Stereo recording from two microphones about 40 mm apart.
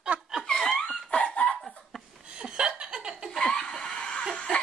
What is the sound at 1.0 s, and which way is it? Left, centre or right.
Laughter, left.